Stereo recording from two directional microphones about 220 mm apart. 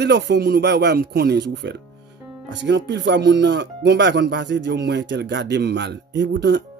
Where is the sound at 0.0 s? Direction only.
50° right (ahead or behind).